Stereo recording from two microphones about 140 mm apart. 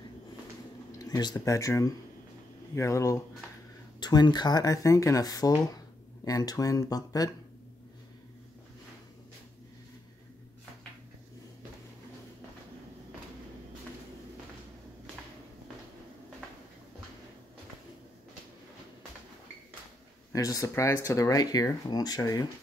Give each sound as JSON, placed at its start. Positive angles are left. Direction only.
{"t": 0.9, "sound": "speech", "side_deg": 25}
{"t": 20.3, "sound": "speech", "side_deg": 25}